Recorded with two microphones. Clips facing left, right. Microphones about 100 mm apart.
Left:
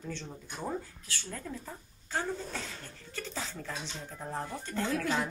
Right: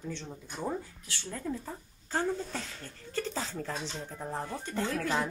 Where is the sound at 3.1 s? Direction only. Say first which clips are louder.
Right 5 dB; 40° right (ahead or behind).